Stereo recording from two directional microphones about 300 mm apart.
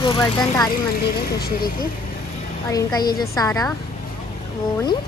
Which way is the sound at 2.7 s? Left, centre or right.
Centre.